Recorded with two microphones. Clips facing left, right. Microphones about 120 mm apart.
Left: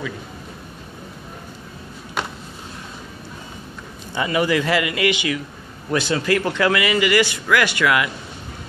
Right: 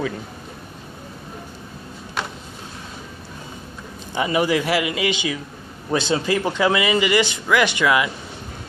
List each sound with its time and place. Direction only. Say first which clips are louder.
4.1 s a man's voice: even; 20° right (ahead or behind)